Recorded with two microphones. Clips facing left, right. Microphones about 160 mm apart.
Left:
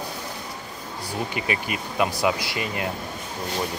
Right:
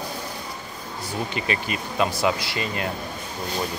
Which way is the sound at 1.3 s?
15° left (ahead or behind).